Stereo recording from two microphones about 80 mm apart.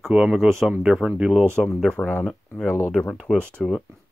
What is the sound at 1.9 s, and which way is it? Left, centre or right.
Speech, centre.